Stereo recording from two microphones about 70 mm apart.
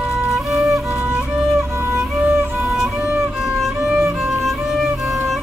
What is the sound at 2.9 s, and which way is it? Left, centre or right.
Music, right.